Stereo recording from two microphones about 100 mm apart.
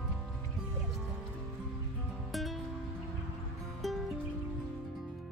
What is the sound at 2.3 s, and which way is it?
Music, centre (ahead or behind).